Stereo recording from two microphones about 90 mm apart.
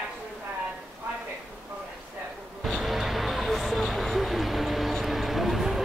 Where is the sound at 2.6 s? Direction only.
Centre (ahead or behind).